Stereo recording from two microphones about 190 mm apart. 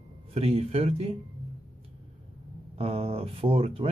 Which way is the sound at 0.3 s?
35° right (ahead or behind).